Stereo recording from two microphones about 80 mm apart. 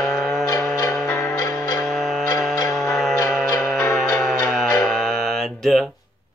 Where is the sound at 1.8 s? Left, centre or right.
Centre.